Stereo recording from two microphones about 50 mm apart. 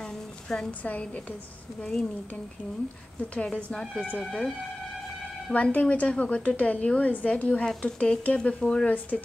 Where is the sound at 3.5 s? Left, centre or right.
Centre.